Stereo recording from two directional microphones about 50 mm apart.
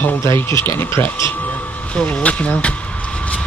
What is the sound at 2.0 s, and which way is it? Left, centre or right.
Speech, left.